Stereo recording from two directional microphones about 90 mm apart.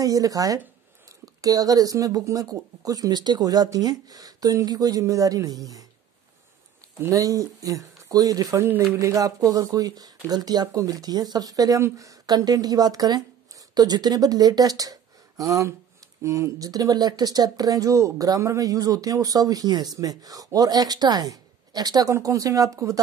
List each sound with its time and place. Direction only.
0.0 s speech: 40° right (ahead or behind)
7.0 s speech: 40° right (ahead or behind)